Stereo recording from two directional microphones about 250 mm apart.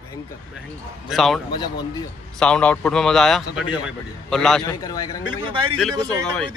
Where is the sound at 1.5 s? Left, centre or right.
Centre.